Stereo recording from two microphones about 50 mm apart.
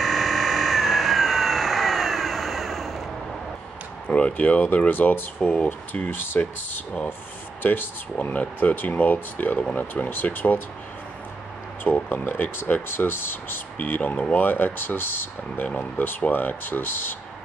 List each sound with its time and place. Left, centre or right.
0.0 s a sound: centre
4.4 s speech: left
5.4 s speech: left
6.0 s speech: left
11.8 s speech: left
15.6 s speech: left